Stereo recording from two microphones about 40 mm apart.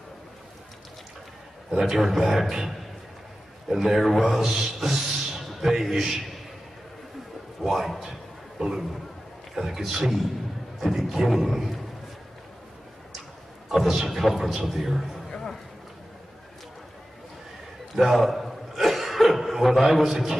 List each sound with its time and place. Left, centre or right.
1.7 s a man's voice: centre
4.7 s a sound: centre
5.7 s a man's voice: centre
7.6 s a sound: centre
9.6 s a man's voice: centre
13.8 s a man's voice: centre
17.9 s chuckle: centre